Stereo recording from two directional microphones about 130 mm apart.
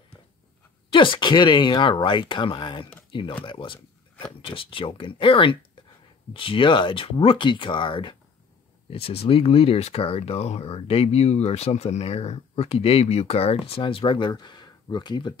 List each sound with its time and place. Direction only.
0.9 s speech: 40° left (ahead or behind)